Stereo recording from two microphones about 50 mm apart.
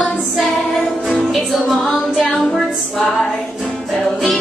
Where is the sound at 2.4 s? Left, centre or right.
Centre.